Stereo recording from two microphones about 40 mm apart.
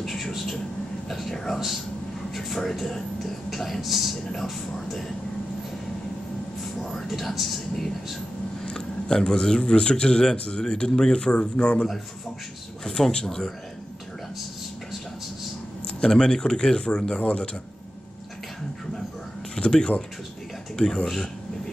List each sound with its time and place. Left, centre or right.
0.0 s a sound: centre
1.0 s speech: centre
6.8 s speech: centre
8.6 s speech: centre
13.1 s speech: centre
16.0 s speech: centre
19.5 s speech: centre